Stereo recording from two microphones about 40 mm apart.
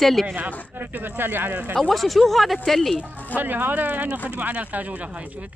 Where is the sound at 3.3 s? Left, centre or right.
Right.